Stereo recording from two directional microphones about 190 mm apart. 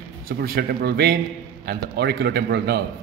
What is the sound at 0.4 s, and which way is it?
A man's voice, 55° right (ahead or behind).